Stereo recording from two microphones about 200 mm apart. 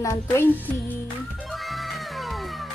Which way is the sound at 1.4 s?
Centre (ahead or behind).